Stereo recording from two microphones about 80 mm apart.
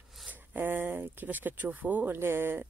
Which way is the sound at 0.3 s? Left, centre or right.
Right.